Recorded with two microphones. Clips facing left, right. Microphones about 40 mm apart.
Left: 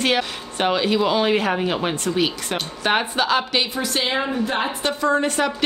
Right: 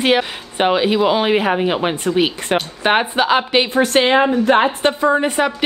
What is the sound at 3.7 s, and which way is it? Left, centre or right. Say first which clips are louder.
A woman's voice: right 9 dB; right.